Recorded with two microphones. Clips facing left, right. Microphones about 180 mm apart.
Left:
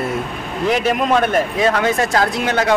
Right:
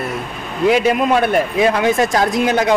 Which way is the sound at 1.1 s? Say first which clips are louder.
Right 1 dB; 10° right (ahead or behind).